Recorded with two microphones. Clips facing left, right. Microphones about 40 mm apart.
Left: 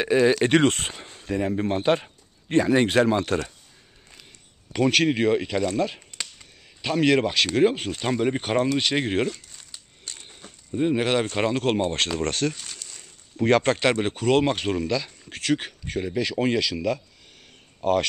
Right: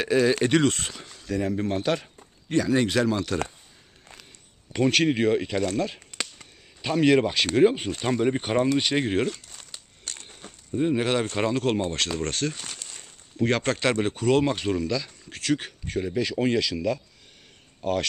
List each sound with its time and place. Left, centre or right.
0.0 s speech: left
0.3 s speech: left
4.7 s speech: centre
8.0 s speech: centre
8.6 s speech: centre
8.9 s speech: centre
9.5 s a sound: right
11.0 s speech: centre
12.3 s speech: left
12.5 s a sound: centre
13.4 s speech: centre
17.8 s speech: centre